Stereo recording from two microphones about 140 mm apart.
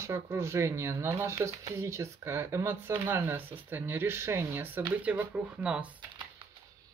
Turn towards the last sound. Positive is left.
turn(degrees=-10)  # may be behind; listen again after turning